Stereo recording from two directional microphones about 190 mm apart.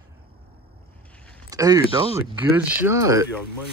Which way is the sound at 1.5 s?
20° right (ahead or behind).